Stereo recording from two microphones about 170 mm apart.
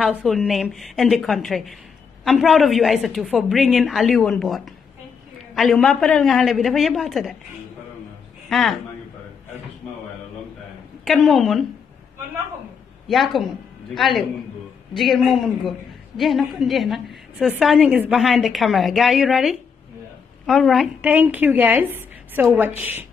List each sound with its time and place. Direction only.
0.2 s a woman's voice: centre (ahead or behind)
8.5 s a man's voice: centre (ahead or behind)
11.1 s a woman's voice: centre (ahead or behind)
13.1 s a woman's voice: centre (ahead or behind)